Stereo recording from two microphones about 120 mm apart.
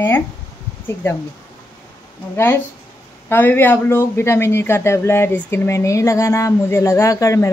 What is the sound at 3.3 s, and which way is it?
Speech, 20° left (ahead or behind).